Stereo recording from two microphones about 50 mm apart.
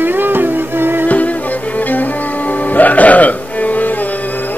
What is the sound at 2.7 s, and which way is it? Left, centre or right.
Music, left.